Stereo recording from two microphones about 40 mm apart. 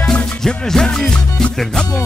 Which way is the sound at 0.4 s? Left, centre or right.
Centre.